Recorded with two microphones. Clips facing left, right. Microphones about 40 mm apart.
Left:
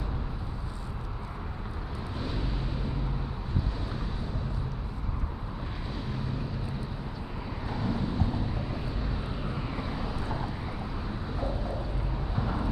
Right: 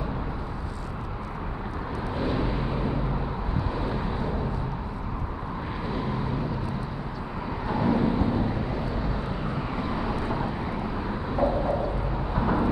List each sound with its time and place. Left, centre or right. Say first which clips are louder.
2.1 s a sound: right 8 dB; right
3.8 s vehicle: right 8 dB; right
7.6 s vehicle: right 9 dB; centre
8.7 s vehicle: right 6 dB; centre; by 12.7 s right